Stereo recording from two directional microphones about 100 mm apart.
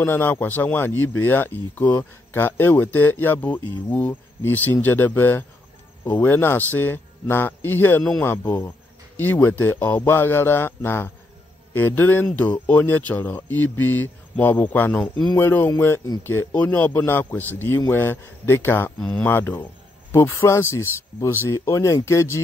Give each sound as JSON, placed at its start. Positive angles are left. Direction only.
{"t": 0.0, "sound": "speech", "side_deg": 20}
{"t": 15.0, "sound": "speech", "side_deg": 5}
{"t": 15.3, "sound": "speech", "side_deg": 20}
{"t": 18.9, "sound": "speech", "side_deg": 5}
{"t": 19.2, "sound": "speech", "side_deg": 20}